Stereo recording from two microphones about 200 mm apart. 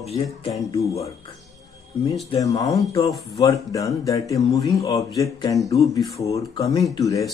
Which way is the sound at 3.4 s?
20° left (ahead or behind).